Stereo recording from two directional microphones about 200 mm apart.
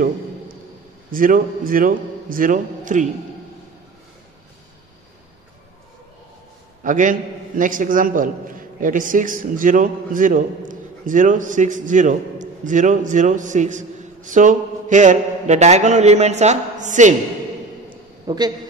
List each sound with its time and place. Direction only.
1.1 s a man's voice: 45° right (ahead or behind)
6.8 s a man's voice: 40° right (ahead or behind)
17.8 s a sound: 20° right (ahead or behind)